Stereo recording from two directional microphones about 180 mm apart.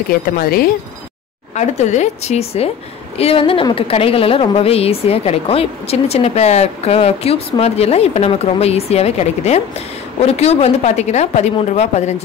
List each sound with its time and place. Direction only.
0.1 s a woman's voice: 55° left (ahead or behind)
1.5 s a woman's voice: 40° left (ahead or behind)